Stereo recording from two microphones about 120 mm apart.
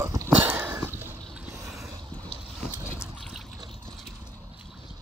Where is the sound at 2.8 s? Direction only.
5° right (ahead or behind).